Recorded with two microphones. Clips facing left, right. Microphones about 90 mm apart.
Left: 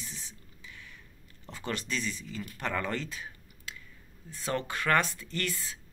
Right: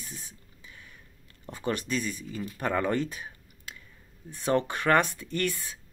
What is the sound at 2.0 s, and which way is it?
Speech, 15° right (ahead or behind).